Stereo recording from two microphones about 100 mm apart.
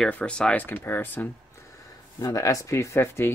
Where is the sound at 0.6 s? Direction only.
20° left (ahead or behind).